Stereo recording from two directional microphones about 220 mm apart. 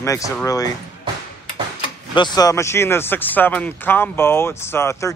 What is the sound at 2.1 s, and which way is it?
Speech, 20° left (ahead or behind).